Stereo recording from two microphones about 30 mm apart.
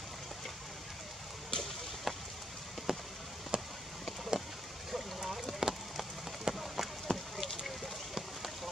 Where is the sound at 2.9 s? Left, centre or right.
Centre.